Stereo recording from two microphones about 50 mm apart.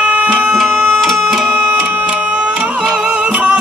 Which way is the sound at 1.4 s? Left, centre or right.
Right.